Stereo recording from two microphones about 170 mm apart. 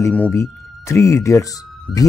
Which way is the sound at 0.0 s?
10° left (ahead or behind).